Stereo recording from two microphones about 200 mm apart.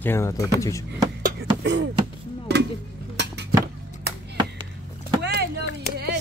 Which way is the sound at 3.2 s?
55° right (ahead or behind).